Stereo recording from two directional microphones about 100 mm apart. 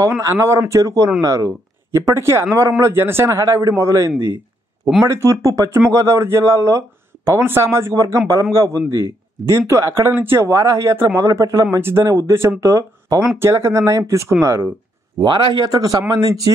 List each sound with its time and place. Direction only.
0.2 s a man's voice: 30° right (ahead or behind)
15.1 s a man's voice: 50° right (ahead or behind); by 16.5 s 35° right (ahead or behind)